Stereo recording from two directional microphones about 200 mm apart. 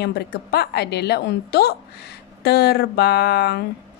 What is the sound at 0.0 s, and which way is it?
A woman's voice, 55° left (ahead or behind).